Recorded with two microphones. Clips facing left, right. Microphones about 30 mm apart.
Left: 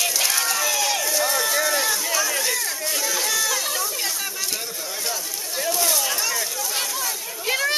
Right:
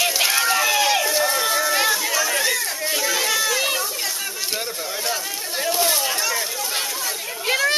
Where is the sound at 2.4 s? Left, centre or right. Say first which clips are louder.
Right 3 dB; centre.